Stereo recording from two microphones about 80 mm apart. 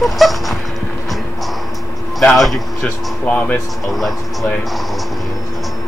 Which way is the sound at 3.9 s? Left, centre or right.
Centre.